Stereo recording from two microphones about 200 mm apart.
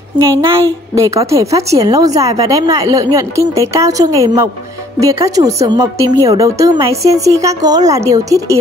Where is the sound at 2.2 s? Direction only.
30° right (ahead or behind).